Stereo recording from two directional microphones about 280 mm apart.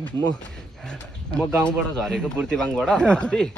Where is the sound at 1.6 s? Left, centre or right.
Centre.